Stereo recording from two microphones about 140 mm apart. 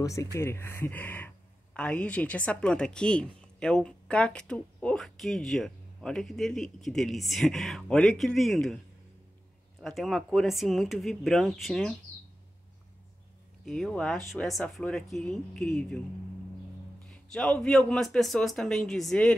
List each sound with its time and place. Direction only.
0.0 s speech: 20° left (ahead or behind); by 8.7 s centre (ahead or behind)
9.8 s speech: centre (ahead or behind)
13.7 s speech: centre (ahead or behind)
17.1 s speech: 5° left (ahead or behind)